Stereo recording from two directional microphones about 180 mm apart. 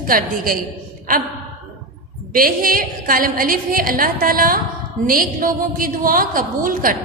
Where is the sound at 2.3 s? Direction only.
50° right (ahead or behind).